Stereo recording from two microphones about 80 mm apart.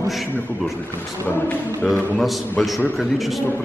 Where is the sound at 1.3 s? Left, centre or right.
Left.